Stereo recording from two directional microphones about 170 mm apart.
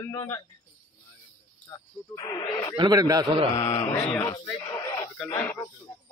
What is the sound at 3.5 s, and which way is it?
Speech, 40° left (ahead or behind).